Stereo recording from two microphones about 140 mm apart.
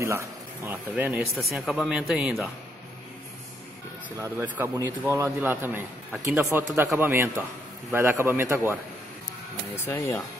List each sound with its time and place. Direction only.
0.0 s speech: 20° right (ahead or behind); by 2.5 s 5° right (ahead or behind)
4.2 s a man's voice: 20° right (ahead or behind)
9.8 s speech: 20° left (ahead or behind)